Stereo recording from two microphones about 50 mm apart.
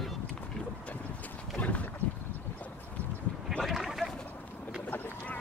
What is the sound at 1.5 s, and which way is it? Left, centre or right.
Boat, left.